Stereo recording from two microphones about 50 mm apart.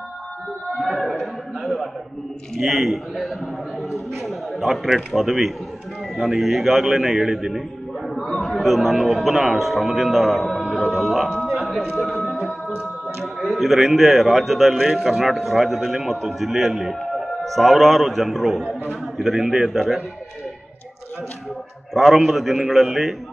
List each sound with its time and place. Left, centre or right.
0.8 s a man's voice: centre
21.9 s a man's voice: centre